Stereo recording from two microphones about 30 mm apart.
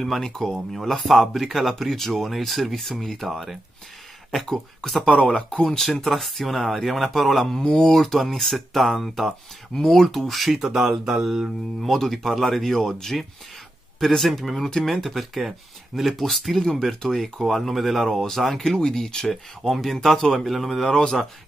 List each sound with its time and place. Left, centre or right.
0.0 s speech: centre
0.8 s speech: centre
2.9 s speech: centre
3.2 s speech: centre
9.8 s speech: centre
10.6 s speech: centre
11.9 s speech: centre
12.7 s speech: centre
18.8 s speech: left
19.7 s speech: centre
20.9 s speech: left